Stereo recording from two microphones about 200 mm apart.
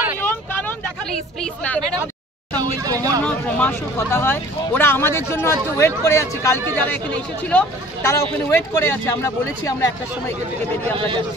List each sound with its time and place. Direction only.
0.2 s vehicle: 10° left (ahead or behind)
1.4 s speech: 5° left (ahead or behind)
2.5 s speech: 20° right (ahead or behind)
3.3 s speech: 10° left (ahead or behind)